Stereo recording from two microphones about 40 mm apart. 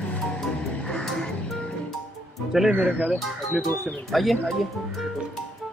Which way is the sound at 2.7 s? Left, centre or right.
Right.